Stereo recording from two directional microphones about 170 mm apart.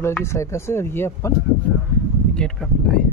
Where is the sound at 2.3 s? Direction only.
5° left (ahead or behind).